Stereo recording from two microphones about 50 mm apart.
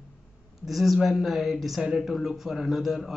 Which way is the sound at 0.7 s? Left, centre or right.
Centre.